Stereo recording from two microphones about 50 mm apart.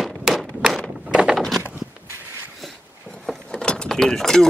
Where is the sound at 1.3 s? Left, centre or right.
Centre.